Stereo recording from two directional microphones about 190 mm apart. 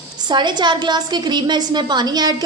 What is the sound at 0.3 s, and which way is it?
A woman's voice, 25° right (ahead or behind).